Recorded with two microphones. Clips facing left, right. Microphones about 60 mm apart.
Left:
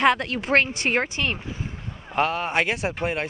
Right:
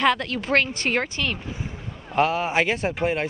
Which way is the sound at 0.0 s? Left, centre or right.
Left.